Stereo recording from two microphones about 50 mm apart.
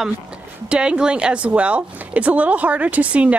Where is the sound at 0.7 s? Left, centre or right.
Centre.